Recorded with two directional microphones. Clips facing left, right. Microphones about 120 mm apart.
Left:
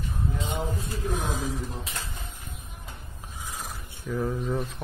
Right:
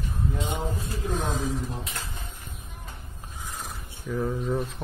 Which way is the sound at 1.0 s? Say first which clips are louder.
Right 2 dB; 10° left (ahead or behind).